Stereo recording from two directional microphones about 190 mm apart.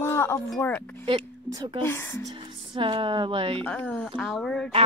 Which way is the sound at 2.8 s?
25° right (ahead or behind).